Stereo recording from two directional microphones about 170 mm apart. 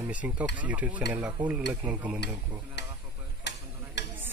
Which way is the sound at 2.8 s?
90° left.